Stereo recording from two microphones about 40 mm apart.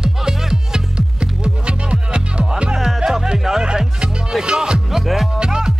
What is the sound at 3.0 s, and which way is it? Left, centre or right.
Music, centre.